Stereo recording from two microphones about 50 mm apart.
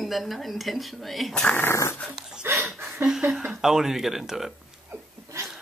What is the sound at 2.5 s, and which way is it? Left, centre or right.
Speech, right.